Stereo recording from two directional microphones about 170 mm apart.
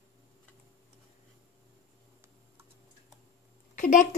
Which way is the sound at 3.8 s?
50° left (ahead or behind).